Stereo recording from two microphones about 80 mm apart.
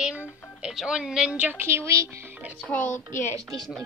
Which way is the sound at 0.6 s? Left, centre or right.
Centre.